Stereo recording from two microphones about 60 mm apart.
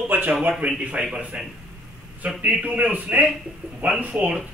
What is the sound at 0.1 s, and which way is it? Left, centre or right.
A man's voice, right.